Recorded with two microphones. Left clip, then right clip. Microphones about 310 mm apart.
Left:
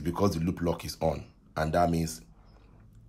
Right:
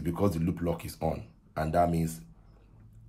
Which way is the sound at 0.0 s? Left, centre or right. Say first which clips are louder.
Left 1 dB; centre.